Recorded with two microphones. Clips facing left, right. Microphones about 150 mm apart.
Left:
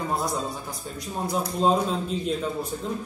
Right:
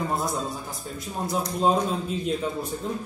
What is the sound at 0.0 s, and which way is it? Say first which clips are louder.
A man's voice: even; centre (ahead or behind).